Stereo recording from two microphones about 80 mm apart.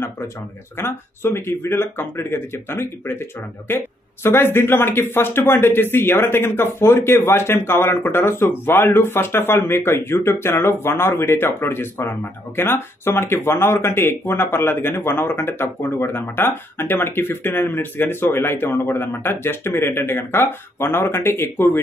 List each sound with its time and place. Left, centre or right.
0.7 s speech: left